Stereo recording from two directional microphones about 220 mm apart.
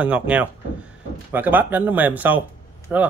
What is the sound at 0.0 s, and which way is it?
A man's voice, 5° right (ahead or behind).